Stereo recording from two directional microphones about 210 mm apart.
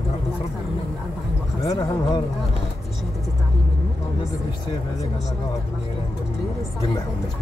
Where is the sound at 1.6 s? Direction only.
20° left (ahead or behind).